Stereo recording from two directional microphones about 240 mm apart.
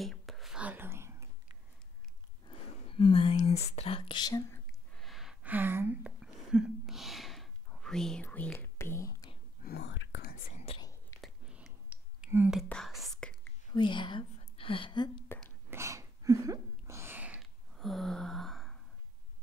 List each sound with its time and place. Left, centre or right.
0.0 s whispering: centre
2.4 s speech: left
4.9 s a sound: centre
9.6 s whispering: left
10.5 s whispering: left
11.1 s whispering: centre
13.7 s speech: centre
15.7 s a sound: centre